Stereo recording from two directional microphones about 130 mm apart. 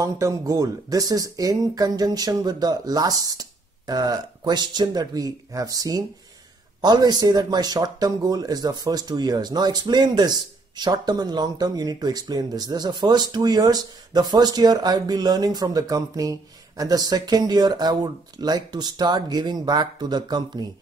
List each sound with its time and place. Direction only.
0.0 s speech: 25° right (ahead or behind)